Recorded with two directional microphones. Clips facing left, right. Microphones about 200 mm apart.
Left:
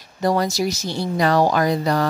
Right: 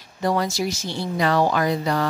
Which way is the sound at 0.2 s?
40° left (ahead or behind).